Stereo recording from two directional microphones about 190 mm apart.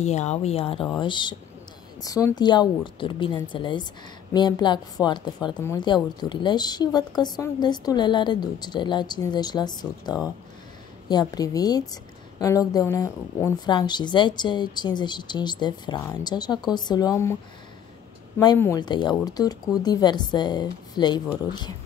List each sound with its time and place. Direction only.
0.0 s a woman's voice: 35° left (ahead or behind); by 17.4 s 15° left (ahead or behind)
18.6 s a woman's voice: 20° left (ahead or behind)